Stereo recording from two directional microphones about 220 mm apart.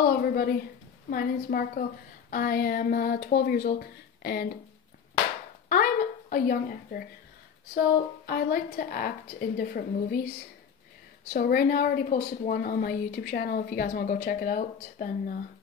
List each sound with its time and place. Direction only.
0.2 s a woman's voice: 40° left (ahead or behind)
5.7 s a sound: 40° left (ahead or behind)
8.3 s a woman's voice: 40° left (ahead or behind)
11.3 s a woman's voice: 40° left (ahead or behind)